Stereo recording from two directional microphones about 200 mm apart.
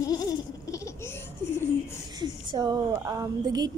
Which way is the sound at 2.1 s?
20° right (ahead or behind).